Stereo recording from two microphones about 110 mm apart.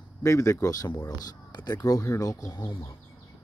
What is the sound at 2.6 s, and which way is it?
Speech, 20° left (ahead or behind).